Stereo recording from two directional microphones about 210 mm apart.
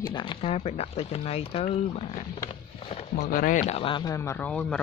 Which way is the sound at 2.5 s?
25° left (ahead or behind).